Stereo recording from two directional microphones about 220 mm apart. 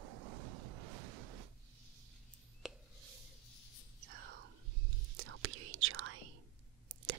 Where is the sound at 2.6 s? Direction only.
Centre (ahead or behind).